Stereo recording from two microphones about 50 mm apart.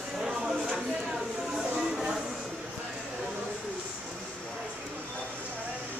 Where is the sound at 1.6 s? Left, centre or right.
Centre.